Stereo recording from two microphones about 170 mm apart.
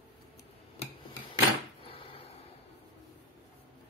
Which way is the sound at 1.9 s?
30° left (ahead or behind).